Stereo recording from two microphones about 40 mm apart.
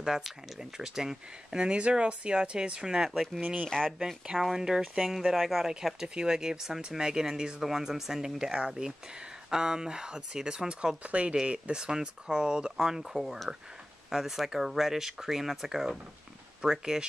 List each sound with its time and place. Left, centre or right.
0.0 s speech: centre
1.6 s speech: right
2.8 s speech: centre
4.3 s speech: centre
5.3 s speech: centre
11.1 s speech: right
11.7 s speech: centre
13.2 s speech: centre